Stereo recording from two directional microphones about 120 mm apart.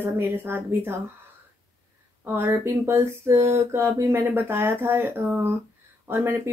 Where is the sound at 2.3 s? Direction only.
20° right (ahead or behind).